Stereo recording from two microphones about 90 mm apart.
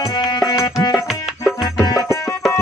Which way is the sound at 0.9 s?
5° right (ahead or behind).